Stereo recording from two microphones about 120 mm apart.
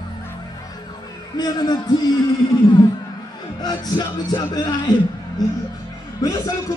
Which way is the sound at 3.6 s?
35° left (ahead or behind).